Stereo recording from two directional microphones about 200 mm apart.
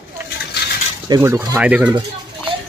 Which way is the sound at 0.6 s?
55° left (ahead or behind).